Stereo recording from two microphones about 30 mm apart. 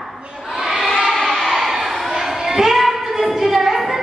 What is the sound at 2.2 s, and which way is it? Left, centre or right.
Child singing, centre.